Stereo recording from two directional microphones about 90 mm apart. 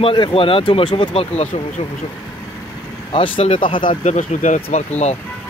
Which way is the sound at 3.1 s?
80° left.